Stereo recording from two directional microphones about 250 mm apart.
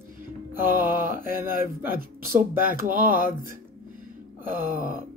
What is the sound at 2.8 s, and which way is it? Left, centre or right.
Speech, right.